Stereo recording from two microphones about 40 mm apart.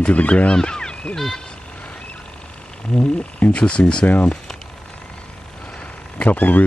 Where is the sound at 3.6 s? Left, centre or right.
Left.